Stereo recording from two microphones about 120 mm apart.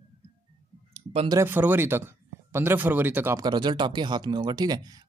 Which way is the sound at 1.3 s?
20° right (ahead or behind).